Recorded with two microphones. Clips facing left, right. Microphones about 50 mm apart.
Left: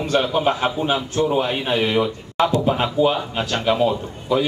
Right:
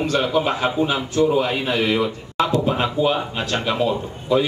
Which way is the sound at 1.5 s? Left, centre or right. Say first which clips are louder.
Even; left.